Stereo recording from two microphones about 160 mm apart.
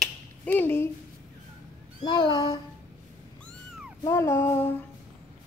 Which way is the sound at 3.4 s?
Centre (ahead or behind).